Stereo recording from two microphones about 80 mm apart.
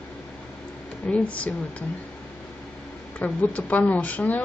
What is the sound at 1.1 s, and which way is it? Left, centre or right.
Speech, centre.